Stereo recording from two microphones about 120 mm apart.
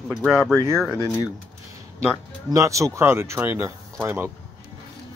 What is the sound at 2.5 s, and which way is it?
Speech, 25° right (ahead or behind).